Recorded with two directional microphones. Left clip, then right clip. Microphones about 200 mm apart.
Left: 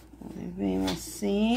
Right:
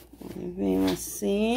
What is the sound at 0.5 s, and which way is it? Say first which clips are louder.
Speech: right 4 dB; 45° right (ahead or behind).